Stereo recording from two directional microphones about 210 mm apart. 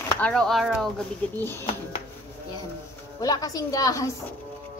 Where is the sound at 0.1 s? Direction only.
5° left (ahead or behind).